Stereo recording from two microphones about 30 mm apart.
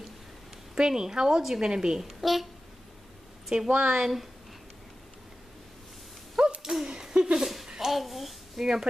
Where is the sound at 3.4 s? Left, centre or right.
Right.